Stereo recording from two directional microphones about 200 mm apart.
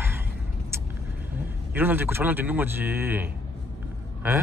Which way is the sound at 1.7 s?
10° right (ahead or behind).